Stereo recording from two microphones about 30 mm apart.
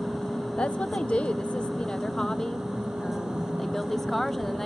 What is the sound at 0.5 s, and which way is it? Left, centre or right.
Speech, left.